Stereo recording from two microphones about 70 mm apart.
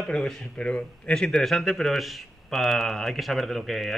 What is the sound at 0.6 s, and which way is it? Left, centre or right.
Speech, centre.